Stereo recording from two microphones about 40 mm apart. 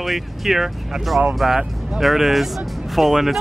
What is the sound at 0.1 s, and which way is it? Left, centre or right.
Speech, centre.